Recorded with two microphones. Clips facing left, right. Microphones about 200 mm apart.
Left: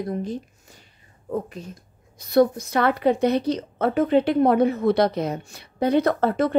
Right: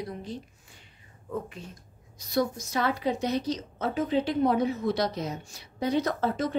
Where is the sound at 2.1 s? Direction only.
60° left (ahead or behind).